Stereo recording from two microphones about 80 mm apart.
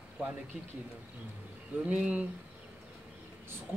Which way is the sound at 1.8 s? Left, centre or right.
Centre.